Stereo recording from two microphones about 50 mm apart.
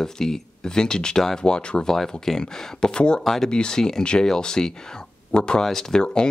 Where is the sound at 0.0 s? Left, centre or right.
Centre.